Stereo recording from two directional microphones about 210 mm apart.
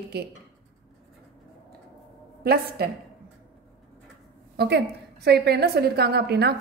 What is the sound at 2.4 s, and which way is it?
Speech, 50° right (ahead or behind).